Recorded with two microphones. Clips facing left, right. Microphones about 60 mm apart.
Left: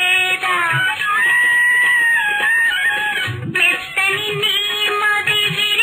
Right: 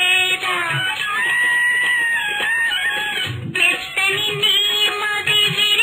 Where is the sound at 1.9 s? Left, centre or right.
Centre.